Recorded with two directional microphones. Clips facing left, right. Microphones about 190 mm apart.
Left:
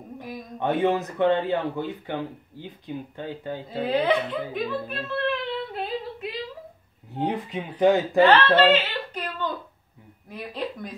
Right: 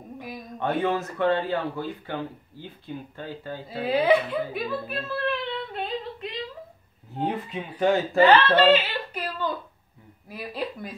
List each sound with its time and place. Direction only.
0.6 s speech: 15° left (ahead or behind)
3.8 s speech: 10° right (ahead or behind)
7.2 s speech: 20° left (ahead or behind)
8.7 s a sound: 5° right (ahead or behind)
10.3 s speech: 5° right (ahead or behind)